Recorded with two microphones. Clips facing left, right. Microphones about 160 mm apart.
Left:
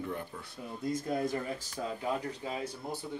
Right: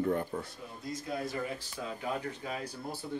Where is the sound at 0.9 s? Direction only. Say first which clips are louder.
Left 4 dB; 50° left (ahead or behind).